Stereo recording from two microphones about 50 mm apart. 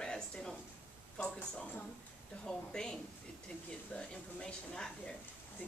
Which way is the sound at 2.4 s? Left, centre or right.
Centre.